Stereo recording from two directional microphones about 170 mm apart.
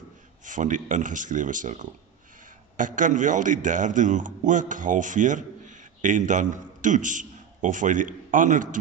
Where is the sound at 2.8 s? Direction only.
50° right (ahead or behind).